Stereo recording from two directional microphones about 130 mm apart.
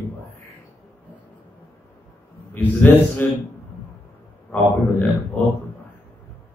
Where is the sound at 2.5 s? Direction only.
15° left (ahead or behind).